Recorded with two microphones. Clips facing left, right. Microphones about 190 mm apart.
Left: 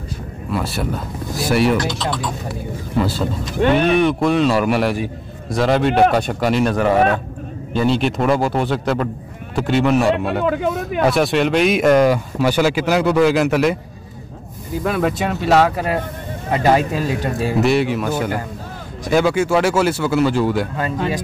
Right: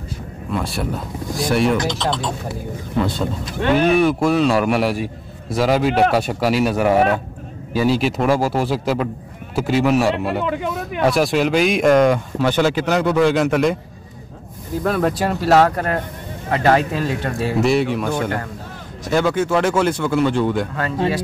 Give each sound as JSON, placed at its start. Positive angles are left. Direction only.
{"t": 0.5, "sound": "a man's voice", "side_deg": 0}
{"t": 1.8, "sound": "speech", "side_deg": -25}
{"t": 3.0, "sound": "a man's voice", "side_deg": 5}
{"t": 14.8, "sound": "a man's voice", "side_deg": 5}
{"t": 17.6, "sound": "a man's voice", "side_deg": 0}